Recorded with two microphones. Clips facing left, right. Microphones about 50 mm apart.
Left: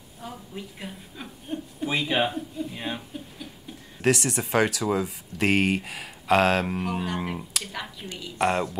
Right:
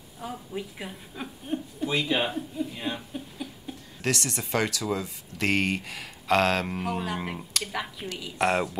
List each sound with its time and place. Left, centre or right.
0.2 s a woman's voice: centre
1.9 s speech: left
2.2 s speech: centre
4.0 s speech: centre
7.6 s speech: centre